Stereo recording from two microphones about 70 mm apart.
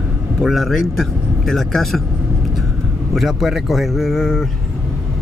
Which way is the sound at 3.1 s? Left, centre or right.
Centre.